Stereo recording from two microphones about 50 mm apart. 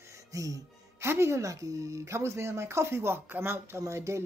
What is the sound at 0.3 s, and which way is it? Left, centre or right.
Speech, right.